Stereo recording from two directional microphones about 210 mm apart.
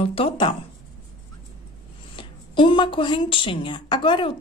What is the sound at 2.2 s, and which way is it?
A woman's voice, 25° left (ahead or behind).